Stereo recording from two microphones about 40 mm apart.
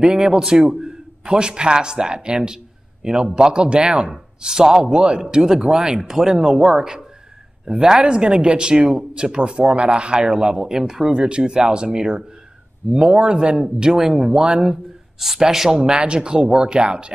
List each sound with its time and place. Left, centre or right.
0.0 s a man's voice: centre
13.3 s a man's voice: right